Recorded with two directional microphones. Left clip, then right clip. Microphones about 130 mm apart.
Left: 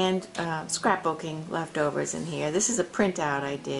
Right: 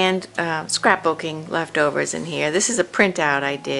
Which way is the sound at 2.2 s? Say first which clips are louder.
Right 6 dB; 45° right (ahead or behind).